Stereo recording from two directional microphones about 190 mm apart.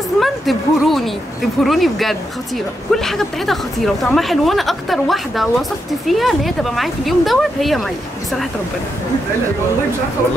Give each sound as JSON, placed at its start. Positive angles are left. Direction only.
{"t": 0.2, "sound": "a woman's voice", "side_deg": 0}